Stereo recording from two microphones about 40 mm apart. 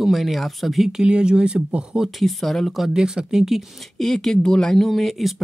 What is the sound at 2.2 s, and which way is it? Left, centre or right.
Speech, centre.